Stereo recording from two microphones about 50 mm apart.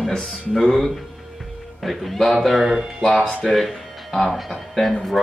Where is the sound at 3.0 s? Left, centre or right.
Centre.